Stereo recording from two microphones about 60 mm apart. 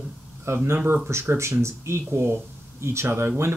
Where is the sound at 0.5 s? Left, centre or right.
Right.